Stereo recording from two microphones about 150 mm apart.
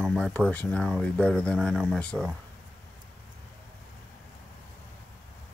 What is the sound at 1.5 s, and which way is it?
Speech, 5° right (ahead or behind).